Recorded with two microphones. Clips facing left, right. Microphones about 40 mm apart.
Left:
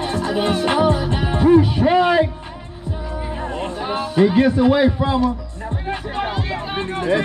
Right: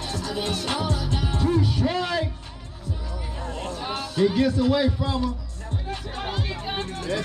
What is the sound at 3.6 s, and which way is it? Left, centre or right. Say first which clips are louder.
A man's voice: left 6 dB; centre.